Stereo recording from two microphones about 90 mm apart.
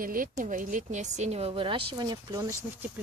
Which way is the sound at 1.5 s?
80° right.